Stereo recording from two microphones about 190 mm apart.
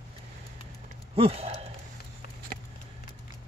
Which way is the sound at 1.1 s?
30° right (ahead or behind).